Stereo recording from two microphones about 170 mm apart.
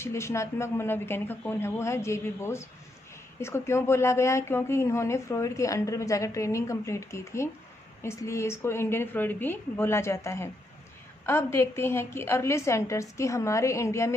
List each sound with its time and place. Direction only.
0.0 s a woman's voice: 15° left (ahead or behind)